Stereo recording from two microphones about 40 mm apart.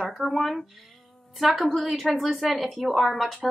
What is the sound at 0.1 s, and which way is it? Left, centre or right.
A woman's voice, centre.